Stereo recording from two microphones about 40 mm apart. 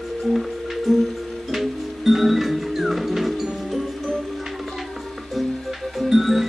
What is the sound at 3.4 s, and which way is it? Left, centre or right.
Music, centre.